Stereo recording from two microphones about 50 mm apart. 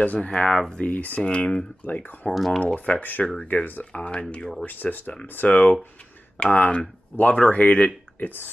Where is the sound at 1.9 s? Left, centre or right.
Left.